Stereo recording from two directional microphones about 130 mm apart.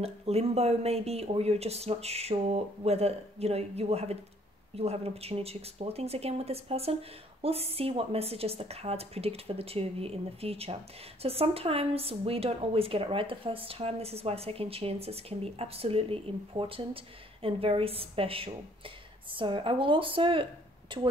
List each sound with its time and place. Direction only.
0.0 s a woman's voice: 50° right (ahead or behind)